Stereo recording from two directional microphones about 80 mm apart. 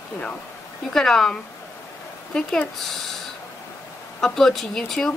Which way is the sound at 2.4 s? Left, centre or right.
Centre.